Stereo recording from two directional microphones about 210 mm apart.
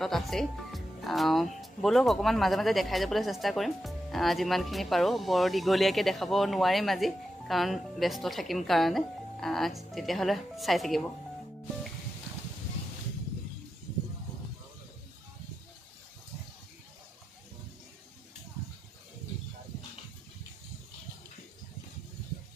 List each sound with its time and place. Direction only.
0.0 s speech: centre (ahead or behind)